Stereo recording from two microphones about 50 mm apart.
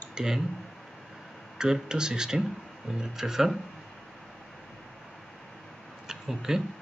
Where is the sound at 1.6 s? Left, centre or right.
Centre.